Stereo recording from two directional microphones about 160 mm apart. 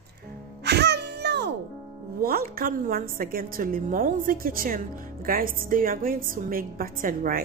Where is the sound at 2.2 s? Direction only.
70° right (ahead or behind).